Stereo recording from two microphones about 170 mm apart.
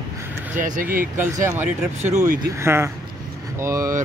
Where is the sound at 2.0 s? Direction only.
45° right (ahead or behind).